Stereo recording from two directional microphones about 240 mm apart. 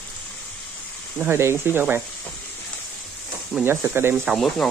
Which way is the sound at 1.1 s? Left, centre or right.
Centre.